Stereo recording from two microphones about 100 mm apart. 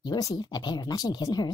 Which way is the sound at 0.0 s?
40° left (ahead or behind).